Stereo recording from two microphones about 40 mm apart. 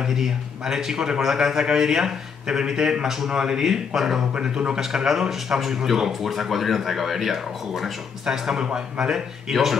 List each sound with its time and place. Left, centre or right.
0.0 s a man's voice: centre
4.4 s a man's voice: right
4.7 s a man's voice: centre
8.3 s a man's voice: centre
9.5 s speech: centre